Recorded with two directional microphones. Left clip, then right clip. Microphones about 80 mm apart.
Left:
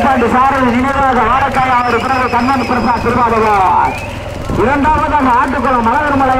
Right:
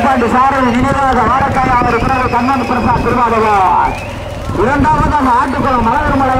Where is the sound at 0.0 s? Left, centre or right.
Centre.